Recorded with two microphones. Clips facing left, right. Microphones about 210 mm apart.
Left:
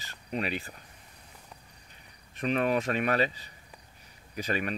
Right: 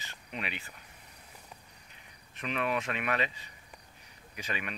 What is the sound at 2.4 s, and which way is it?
Speech, 40° left (ahead or behind).